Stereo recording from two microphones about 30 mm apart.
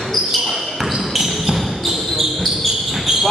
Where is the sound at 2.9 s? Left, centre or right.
Centre.